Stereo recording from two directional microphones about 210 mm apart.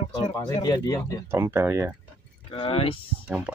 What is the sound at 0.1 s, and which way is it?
Speech, 20° left (ahead or behind).